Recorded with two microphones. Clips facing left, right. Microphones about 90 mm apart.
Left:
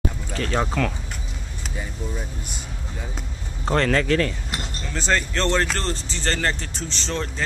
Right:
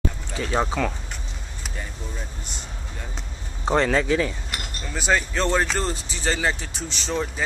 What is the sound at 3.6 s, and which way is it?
Speech, 10° right (ahead or behind).